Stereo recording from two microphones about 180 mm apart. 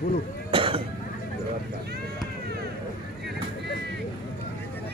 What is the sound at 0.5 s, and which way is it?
Cough, 30° right (ahead or behind).